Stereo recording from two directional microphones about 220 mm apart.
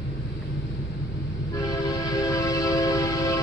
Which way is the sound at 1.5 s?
15° left (ahead or behind).